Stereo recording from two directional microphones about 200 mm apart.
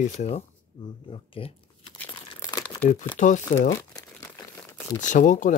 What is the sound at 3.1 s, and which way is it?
Speech, 40° left (ahead or behind).